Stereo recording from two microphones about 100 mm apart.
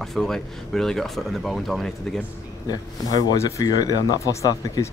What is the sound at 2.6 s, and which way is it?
Speech, 40° left (ahead or behind).